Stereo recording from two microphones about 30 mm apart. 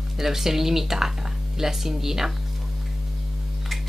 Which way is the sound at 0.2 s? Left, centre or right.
Centre.